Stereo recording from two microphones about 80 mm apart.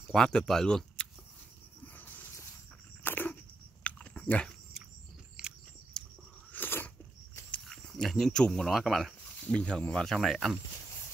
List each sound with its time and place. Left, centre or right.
0.0 s speech: centre
2.0 s dog: left
3.8 s biting: centre
5.4 s biting: centre
5.9 s biting: centre
6.5 s biting: left
7.7 s speech: centre
9.4 s speech: centre